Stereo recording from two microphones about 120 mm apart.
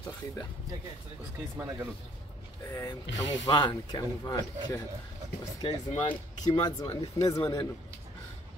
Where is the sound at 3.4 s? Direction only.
35° left (ahead or behind).